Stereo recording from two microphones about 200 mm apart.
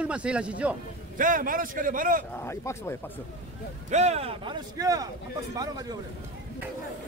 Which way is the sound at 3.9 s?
35° right (ahead or behind).